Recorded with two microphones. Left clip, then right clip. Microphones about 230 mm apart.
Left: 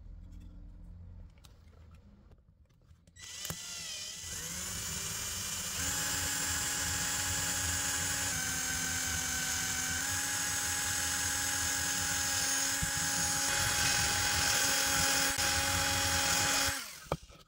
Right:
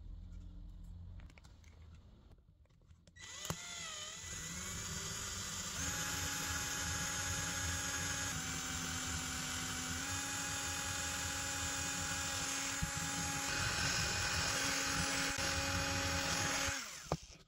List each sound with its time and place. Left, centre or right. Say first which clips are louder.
4.4 s vehicle: left 5 dB; centre
4.8 s a sound: left 5 dB; centre
16.5 s tools: left 6 dB; centre